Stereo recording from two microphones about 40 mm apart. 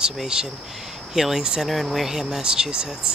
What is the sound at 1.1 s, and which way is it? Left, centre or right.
Speech, centre.